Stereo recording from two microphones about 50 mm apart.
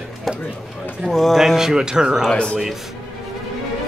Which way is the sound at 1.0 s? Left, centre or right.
Centre.